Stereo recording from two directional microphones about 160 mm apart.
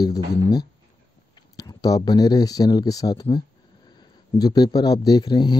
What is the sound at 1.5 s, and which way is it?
Speech, 20° left (ahead or behind).